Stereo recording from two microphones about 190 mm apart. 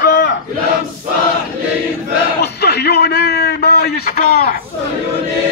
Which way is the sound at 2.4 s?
60° left (ahead or behind).